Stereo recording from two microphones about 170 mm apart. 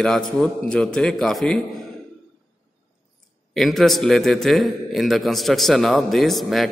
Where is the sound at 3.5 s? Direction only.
Centre (ahead or behind).